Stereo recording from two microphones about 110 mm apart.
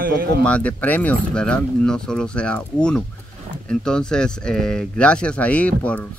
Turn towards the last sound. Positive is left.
turn(degrees=10)  # may be behind; listen again after turning